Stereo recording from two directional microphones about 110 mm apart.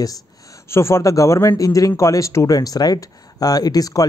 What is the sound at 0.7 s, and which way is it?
Speech, 25° left (ahead or behind).